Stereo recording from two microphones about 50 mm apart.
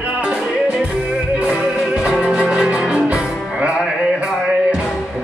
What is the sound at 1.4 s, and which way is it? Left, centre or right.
Music, right.